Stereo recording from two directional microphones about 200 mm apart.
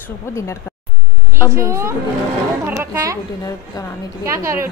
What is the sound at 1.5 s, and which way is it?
Speech, 15° right (ahead or behind).